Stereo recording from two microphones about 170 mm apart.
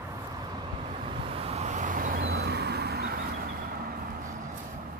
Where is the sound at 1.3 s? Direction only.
35° right (ahead or behind); by 4.1 s 60° right (ahead or behind).